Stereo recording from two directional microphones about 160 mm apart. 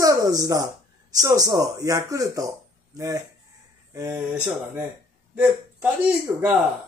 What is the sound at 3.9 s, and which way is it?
Mantra, 15° right (ahead or behind).